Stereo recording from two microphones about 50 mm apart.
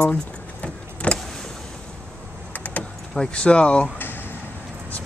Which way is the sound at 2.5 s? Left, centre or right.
Left.